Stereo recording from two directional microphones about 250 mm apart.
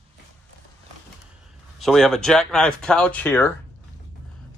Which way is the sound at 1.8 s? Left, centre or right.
Centre.